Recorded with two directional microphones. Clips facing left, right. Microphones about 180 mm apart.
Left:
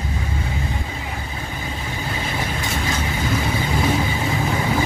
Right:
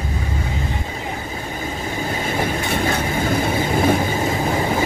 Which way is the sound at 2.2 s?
45° right (ahead or behind).